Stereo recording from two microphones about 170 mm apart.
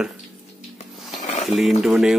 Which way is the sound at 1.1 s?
45° left (ahead or behind).